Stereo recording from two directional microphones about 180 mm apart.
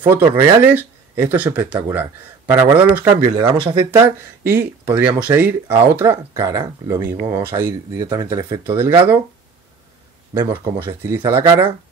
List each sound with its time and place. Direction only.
0.0 s speech: 15° right (ahead or behind)
3.1 s speech: 25° right (ahead or behind)
3.9 s speech: 15° right (ahead or behind)
10.3 s speech: 15° right (ahead or behind)